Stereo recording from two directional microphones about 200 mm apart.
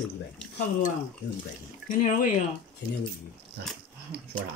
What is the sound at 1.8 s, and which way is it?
Speech, 40° left (ahead or behind).